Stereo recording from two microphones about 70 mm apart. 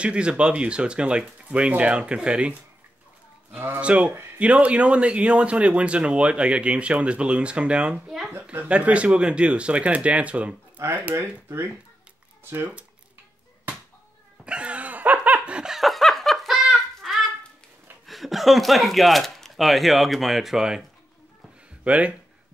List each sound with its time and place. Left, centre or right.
0.0 s speech: centre
3.5 s speech: right
3.8 s speech: centre
8.3 s speech: right
10.8 s speech: right
12.5 s speech: centre
14.4 s laughter: centre
18.0 s speech: centre
21.8 s speech: centre